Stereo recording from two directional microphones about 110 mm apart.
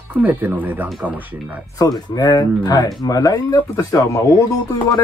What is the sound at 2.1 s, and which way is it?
Speech, 35° left (ahead or behind).